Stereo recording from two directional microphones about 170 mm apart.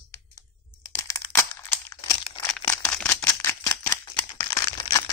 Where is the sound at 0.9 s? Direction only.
15° left (ahead or behind).